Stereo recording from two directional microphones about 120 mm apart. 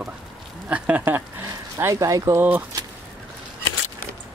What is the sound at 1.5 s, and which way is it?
Speech, 25° right (ahead or behind).